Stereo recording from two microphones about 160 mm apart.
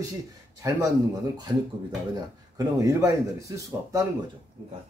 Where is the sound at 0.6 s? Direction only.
20° right (ahead or behind).